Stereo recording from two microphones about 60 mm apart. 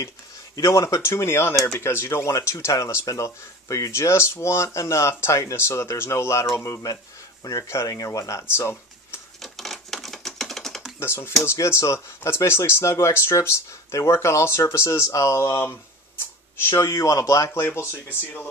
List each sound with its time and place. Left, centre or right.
0.6 s speech: left
7.6 s speech: left
7.9 s speech: left
9.4 s typewriter: centre
11.0 s speech: left
11.5 s speech: left
16.7 s speech: left
17.6 s speech: left